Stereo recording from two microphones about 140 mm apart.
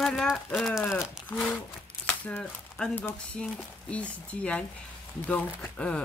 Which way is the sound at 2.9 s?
10° left (ahead or behind).